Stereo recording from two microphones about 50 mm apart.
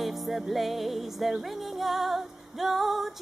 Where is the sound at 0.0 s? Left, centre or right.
Centre.